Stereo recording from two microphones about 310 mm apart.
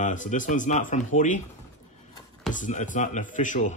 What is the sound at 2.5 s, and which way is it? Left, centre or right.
Speech, left.